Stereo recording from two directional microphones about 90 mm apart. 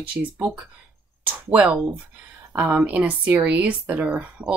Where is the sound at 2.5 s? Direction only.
15° right (ahead or behind).